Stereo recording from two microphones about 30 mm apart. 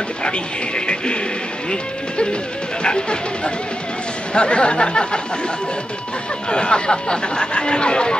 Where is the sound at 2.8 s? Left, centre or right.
Left.